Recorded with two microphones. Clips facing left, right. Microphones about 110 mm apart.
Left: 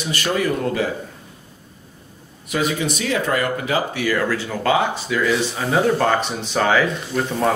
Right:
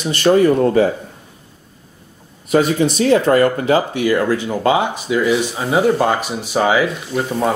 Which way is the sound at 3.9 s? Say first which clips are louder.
Right 5 dB; 25° right (ahead or behind).